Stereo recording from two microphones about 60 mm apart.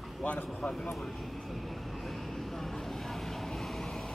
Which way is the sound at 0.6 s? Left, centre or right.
Centre.